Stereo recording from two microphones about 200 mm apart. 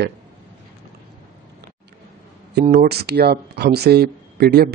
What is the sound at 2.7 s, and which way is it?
Speech, 50° right (ahead or behind).